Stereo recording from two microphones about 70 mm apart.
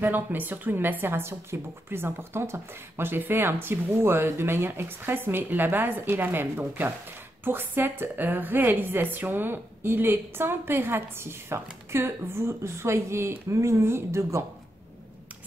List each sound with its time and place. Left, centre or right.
0.0 s speech: right